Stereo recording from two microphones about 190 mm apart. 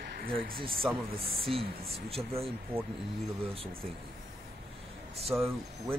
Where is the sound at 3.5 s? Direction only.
30° right (ahead or behind).